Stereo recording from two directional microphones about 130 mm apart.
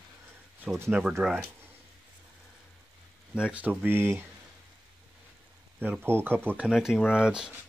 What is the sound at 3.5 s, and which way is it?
Speech, 10° right (ahead or behind).